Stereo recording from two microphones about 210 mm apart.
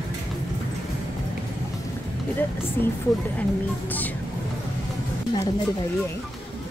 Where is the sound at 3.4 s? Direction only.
10° left (ahead or behind).